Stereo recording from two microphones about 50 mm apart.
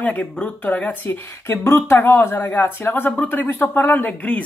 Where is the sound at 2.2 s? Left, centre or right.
Left.